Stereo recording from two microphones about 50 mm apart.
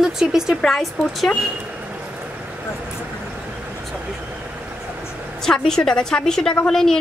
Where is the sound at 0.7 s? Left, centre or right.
Centre.